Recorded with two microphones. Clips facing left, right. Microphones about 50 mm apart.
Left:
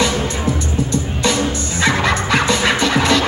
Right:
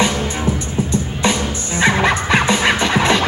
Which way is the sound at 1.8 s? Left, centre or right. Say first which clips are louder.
Right 2 dB; centre.